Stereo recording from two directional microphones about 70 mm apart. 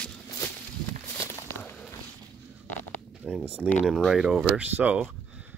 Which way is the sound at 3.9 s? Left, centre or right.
Centre.